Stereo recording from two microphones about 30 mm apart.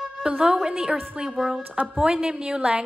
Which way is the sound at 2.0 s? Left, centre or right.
Right.